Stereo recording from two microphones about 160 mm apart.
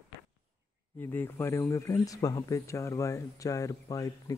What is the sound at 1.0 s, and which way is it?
Speech, 15° left (ahead or behind).